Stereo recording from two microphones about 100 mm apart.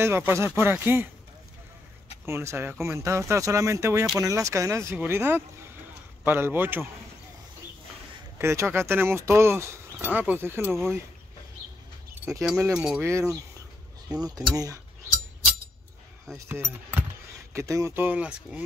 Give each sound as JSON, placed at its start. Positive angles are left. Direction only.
{"t": 0.0, "sound": "speech", "side_deg": -25}
{"t": 2.2, "sound": "speech", "side_deg": -25}
{"t": 8.4, "sound": "speech", "side_deg": -25}
{"t": 12.7, "sound": "speech", "side_deg": -5}
{"t": 13.0, "sound": "speech", "side_deg": -30}
{"t": 16.3, "sound": "speech", "side_deg": -25}
{"t": 17.9, "sound": "speech", "side_deg": -15}